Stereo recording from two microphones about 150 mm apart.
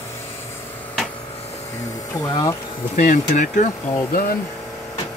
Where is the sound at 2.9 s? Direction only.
55° left (ahead or behind).